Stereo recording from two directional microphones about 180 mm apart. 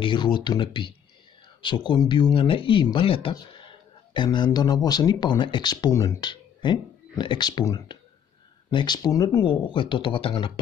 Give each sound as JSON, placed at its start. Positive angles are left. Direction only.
{"t": 0.0, "sound": "speech", "side_deg": 25}